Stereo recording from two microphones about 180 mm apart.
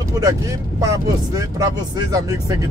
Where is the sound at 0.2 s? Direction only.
20° right (ahead or behind).